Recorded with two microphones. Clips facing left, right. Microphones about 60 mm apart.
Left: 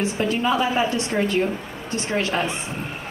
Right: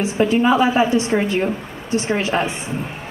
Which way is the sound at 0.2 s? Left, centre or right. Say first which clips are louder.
Right 7 dB; right.